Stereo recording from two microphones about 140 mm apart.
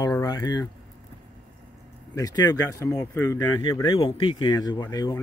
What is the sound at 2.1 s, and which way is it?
Speech, 25° left (ahead or behind).